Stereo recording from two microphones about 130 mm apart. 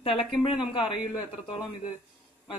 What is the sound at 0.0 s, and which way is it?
A woman's voice, 45° left (ahead or behind).